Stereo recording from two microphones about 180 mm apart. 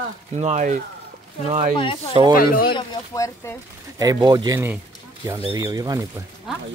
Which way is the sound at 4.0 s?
20° right (ahead or behind).